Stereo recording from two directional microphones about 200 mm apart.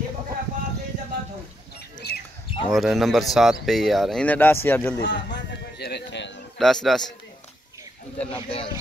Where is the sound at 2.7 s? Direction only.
Centre (ahead or behind).